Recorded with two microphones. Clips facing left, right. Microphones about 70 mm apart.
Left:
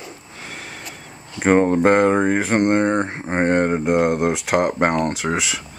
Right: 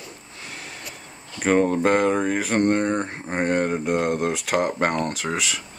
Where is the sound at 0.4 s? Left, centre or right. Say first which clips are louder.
Left 3 dB; left.